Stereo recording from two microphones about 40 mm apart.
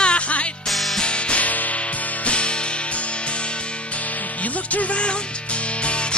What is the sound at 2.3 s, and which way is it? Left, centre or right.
Music, left.